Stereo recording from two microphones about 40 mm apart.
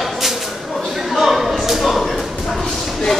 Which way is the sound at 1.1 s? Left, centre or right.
Centre.